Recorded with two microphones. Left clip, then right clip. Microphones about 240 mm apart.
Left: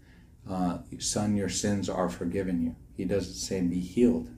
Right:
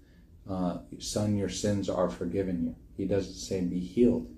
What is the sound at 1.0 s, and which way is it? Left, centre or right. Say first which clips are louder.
Speech: left 1 dB; centre.